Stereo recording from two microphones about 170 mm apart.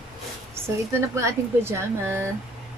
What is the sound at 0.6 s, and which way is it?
Speech, 15° right (ahead or behind).